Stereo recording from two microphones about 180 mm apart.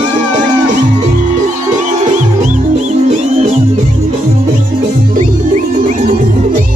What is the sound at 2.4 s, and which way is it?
Music, 45° right (ahead or behind).